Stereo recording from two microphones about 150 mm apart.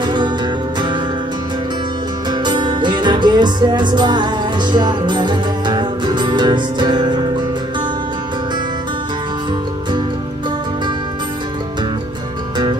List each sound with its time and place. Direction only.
0.0 s music: 30° right (ahead or behind)
2.4 s music: 30° right (ahead or behind)